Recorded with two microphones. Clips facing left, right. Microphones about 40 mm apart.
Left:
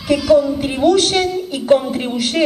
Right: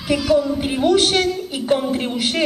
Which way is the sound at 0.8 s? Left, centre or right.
Right.